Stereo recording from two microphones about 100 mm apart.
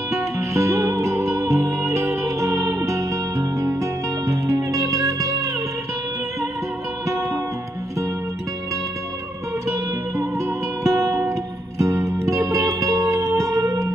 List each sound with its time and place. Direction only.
0.1 s music: 30° right (ahead or behind)
10.8 s music: 30° right (ahead or behind)